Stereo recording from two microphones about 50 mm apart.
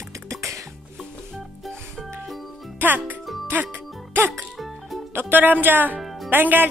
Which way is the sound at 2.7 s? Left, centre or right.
Right.